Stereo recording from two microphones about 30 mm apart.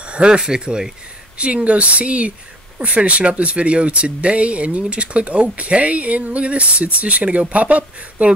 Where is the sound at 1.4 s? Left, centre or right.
Right.